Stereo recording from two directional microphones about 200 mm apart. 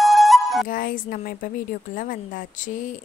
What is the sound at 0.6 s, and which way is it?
A woman's voice, 45° left (ahead or behind).